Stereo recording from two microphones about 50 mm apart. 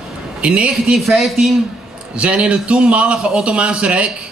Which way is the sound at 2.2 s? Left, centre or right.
Right.